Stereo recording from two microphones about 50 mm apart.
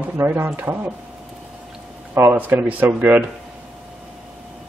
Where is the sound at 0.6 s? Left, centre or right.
Right.